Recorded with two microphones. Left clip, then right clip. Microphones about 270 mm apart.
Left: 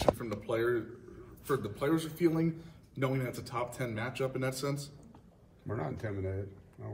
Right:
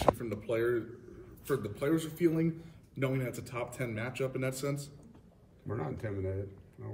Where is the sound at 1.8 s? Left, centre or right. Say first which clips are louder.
Right 1 dB; centre.